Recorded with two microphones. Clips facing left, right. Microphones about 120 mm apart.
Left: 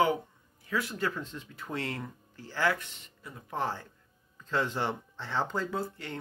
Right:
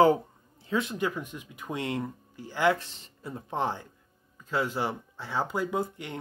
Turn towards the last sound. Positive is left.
turn(degrees=-15)  # may be behind; listen again after turning